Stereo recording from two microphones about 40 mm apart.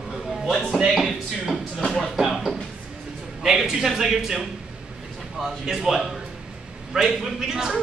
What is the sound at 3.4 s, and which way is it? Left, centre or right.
Speech, centre.